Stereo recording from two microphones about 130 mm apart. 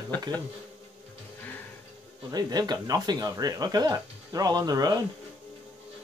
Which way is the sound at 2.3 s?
30° right (ahead or behind).